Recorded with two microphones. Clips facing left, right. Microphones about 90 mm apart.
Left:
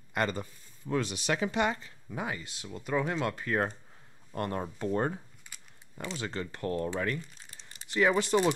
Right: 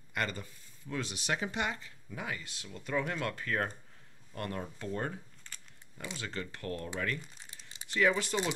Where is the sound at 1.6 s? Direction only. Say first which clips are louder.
Left 6 dB; 40° left (ahead or behind).